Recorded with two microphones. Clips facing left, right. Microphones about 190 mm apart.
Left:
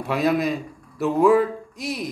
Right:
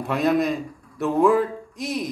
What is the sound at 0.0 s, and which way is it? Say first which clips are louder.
Speech: right 1 dB; centre (ahead or behind).